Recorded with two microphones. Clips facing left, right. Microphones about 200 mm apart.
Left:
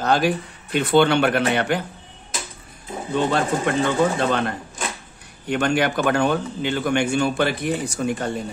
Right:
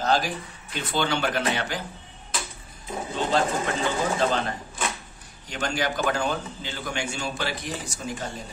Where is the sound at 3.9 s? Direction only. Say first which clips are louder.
Left 2 dB; 60° left (ahead or behind).